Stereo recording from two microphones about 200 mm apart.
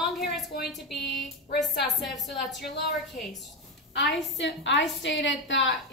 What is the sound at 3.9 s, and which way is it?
A woman's voice, 65° left (ahead or behind).